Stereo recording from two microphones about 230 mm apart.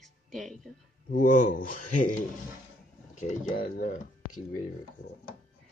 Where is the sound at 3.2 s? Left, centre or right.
Left.